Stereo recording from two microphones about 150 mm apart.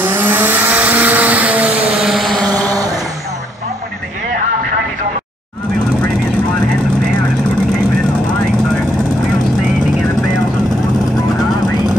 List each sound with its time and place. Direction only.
0.0 s vehicle: 15° right (ahead or behind)
2.7 s vehicle: 25° right (ahead or behind)